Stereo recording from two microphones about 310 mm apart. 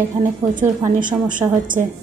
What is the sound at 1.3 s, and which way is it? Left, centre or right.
Speech, right.